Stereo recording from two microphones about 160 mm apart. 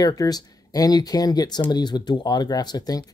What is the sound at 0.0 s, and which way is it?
Speech, 20° left (ahead or behind).